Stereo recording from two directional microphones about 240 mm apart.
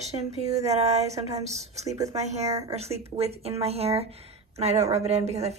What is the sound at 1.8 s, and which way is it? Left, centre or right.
Speech, centre.